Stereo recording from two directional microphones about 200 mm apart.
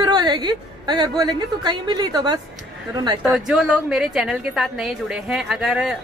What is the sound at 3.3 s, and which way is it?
A woman's voice, centre (ahead or behind).